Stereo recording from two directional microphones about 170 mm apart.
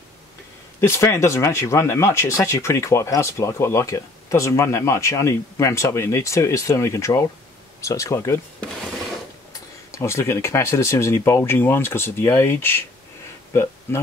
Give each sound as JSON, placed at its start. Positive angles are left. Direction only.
{"t": 0.7, "sound": "speech", "side_deg": 15}
{"t": 13.9, "sound": "speech", "side_deg": 15}